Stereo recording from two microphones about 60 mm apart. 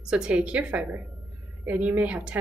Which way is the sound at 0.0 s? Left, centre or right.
Centre.